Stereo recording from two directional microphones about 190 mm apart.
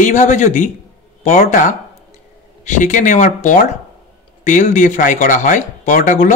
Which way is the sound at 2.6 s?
45° left (ahead or behind).